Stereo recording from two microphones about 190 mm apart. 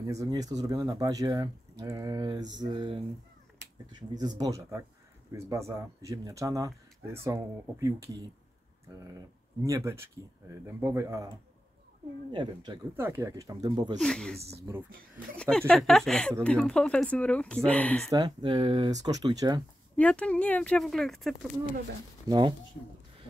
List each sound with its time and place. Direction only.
0.0 s speech: 15° right (ahead or behind)
9.6 s speech: 15° right (ahead or behind)
12.3 s speech: 25° right (ahead or behind)
13.9 s speech: 5° left (ahead or behind)
14.7 s speech: 15° right (ahead or behind)
15.5 s speech: 5° left (ahead or behind)
18.1 s speech: 25° right (ahead or behind)
20.0 s speech: 5° left (ahead or behind)
22.3 s speech: 20° right (ahead or behind)